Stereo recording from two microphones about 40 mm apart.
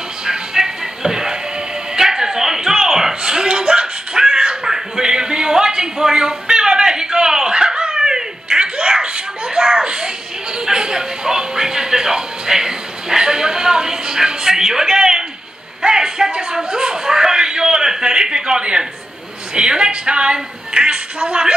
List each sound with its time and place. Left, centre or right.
0.2 s music: centre
2.0 s a sound: centre
19.5 s a woman's voice: right